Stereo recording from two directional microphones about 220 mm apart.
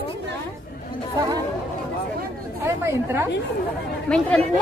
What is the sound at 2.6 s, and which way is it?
Speech, 10° right (ahead or behind).